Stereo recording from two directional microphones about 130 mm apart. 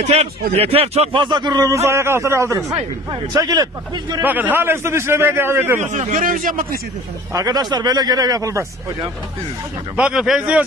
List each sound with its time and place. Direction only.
0.0 s a man's voice: 55° right (ahead or behind)
1.2 s a man's voice: 35° right (ahead or behind)
1.9 s a man's voice: 20° right (ahead or behind)
4.2 s a man's voice: 15° right (ahead or behind)
5.8 s speech: 70° right (ahead or behind); by 6.6 s 90° right
7.3 s a man's voice: 30° right (ahead or behind)
9.9 s a man's voice: 5° right (ahead or behind)